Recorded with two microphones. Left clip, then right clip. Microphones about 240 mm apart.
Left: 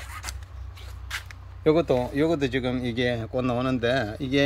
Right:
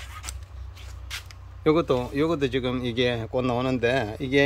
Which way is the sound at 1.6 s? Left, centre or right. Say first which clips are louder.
Left 1 dB; centre.